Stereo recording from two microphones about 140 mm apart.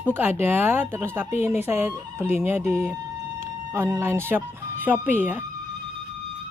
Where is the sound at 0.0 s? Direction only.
15° right (ahead or behind).